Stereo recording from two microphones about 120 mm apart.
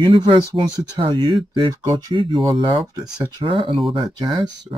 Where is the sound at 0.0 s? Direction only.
40° right (ahead or behind).